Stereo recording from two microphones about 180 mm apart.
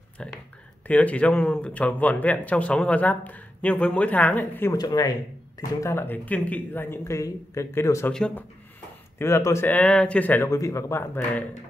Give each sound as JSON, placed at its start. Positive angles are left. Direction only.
{"t": 0.2, "sound": "speech", "side_deg": 5}
{"t": 4.7, "sound": "speech", "side_deg": 20}
{"t": 8.1, "sound": "speech", "side_deg": 5}
{"t": 9.2, "sound": "speech", "side_deg": 15}